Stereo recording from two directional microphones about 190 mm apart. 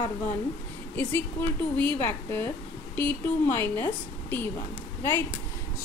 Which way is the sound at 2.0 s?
10° left (ahead or behind).